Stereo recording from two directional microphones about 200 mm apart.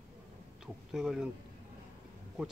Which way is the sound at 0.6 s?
5° right (ahead or behind).